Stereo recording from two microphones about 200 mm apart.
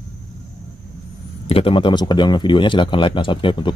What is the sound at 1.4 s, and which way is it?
Speech, 30° left (ahead or behind).